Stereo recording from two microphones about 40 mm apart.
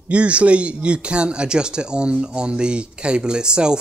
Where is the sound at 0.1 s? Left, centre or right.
Right.